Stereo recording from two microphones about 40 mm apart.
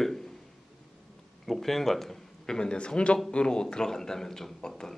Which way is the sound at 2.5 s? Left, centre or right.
Left.